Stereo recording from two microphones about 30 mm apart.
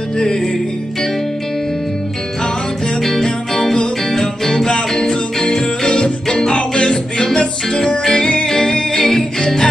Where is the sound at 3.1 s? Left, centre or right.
Centre.